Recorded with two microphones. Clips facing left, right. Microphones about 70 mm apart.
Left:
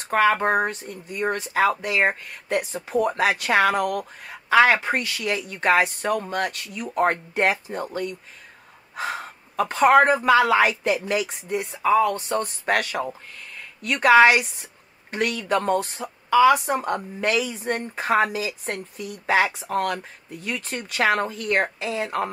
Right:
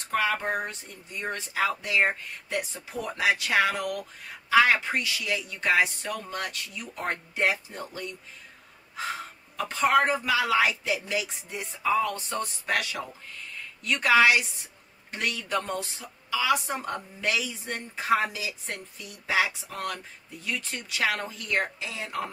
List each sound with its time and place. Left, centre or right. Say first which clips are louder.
0.1 s a woman's voice: left 8 dB; left